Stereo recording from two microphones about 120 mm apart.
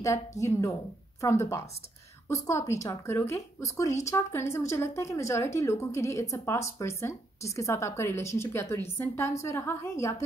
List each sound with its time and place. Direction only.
0.4 s a woman's voice: 25° left (ahead or behind)